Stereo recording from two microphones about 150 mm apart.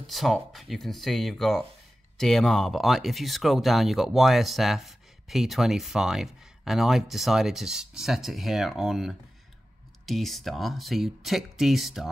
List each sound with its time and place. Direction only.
0.0 s speech: centre (ahead or behind)